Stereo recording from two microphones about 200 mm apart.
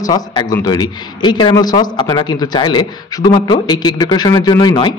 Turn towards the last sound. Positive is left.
turn(degrees=25)  # may be behind; listen again after turning